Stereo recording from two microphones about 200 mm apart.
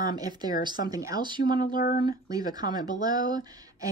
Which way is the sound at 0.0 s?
20° right (ahead or behind).